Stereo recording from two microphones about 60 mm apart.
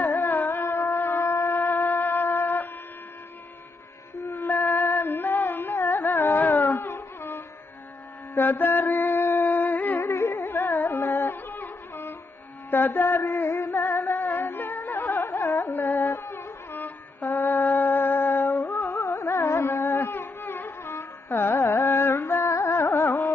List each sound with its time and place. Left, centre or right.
0.2 s music: left
0.7 s shofar: left
1.6 s shofar: left
4.3 s music: left
6.8 s music: left
8.4 s mantra: left
9.4 s music: left
9.9 s carnatic music: left
10.4 s carnatic music: left
11.9 s music: left
12.7 s mantra: left
13.5 s music: left
16.7 s a sound: left
19.1 s carnatic music: left